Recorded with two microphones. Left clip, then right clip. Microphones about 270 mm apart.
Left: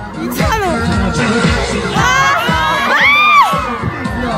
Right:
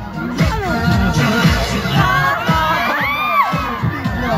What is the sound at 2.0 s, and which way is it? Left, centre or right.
Crowd, left.